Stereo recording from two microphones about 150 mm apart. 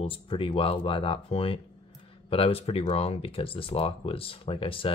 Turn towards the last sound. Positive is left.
turn(degrees=35)  # may be behind; listen again after turning